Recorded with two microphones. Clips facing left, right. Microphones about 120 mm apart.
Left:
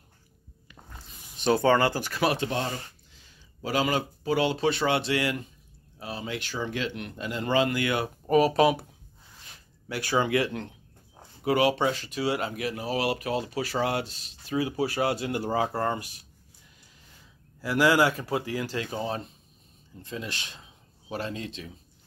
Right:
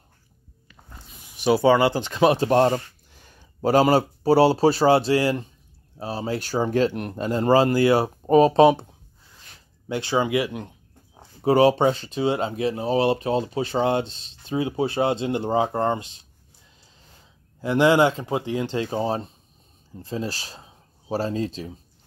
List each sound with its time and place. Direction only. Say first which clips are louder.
1.3 s speech: right 4 dB; 10° right (ahead or behind); by 2.5 s 30° right (ahead or behind)
2.5 s speech: right 12 dB; 50° right (ahead or behind); by 8.8 s 25° right (ahead or behind)
9.8 s speech: right 3 dB; 20° right (ahead or behind)
11.4 s speech: right 6 dB; 30° right (ahead or behind)
17.6 s speech: right 5 dB; 25° right (ahead or behind)